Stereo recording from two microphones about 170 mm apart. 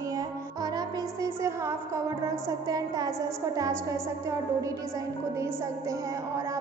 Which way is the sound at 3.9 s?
20° right (ahead or behind).